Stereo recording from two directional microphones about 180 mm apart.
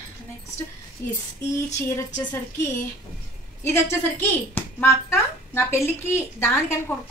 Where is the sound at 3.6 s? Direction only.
15° left (ahead or behind).